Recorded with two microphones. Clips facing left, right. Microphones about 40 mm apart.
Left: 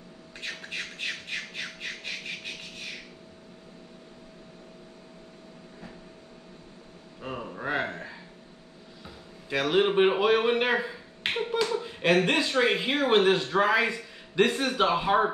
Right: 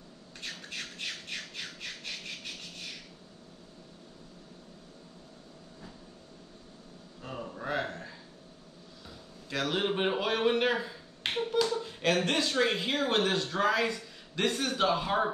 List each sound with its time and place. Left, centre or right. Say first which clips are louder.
0.4 s squawk: left 5 dB; left
7.2 s a sound: left 4 dB; left
12.3 s speech: left 4 dB; centre